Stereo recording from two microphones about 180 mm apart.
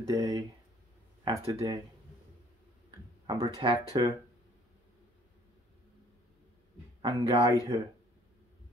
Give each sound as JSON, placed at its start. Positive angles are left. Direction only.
{"t": 0.0, "sound": "a sound", "side_deg": -20}
{"t": 1.2, "sound": "speech", "side_deg": -15}
{"t": 3.3, "sound": "speech", "side_deg": -20}
{"t": 7.0, "sound": "speech", "side_deg": -20}